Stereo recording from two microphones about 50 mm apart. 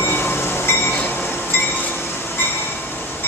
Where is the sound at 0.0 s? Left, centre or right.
Left.